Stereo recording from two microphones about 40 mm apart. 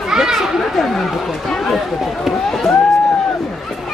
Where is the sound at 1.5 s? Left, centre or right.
Centre.